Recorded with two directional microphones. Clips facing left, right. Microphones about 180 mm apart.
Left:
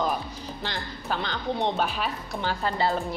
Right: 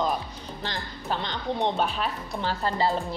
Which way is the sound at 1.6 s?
5° left (ahead or behind).